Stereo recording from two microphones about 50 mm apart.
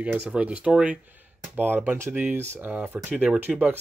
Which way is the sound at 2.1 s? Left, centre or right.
Right.